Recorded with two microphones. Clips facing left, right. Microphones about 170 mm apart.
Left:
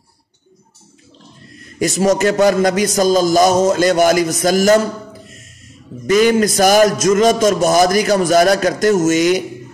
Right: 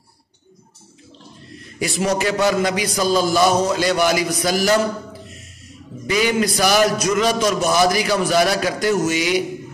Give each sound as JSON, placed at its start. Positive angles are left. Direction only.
{"t": 1.8, "sound": "a man's voice", "side_deg": 45}
{"t": 6.0, "sound": "a man's voice", "side_deg": 45}